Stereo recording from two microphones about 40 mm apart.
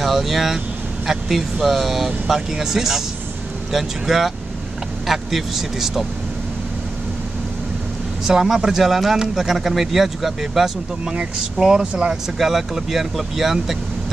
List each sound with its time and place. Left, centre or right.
0.0 s speech: centre
8.3 s speech: centre
11.8 s speech: right
12.4 s speech: centre